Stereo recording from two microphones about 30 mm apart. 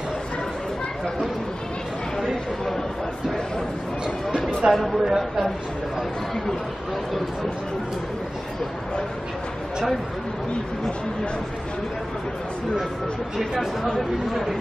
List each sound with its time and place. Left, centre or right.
4.6 s speech: right
5.0 s speech: centre
14.3 s speech: centre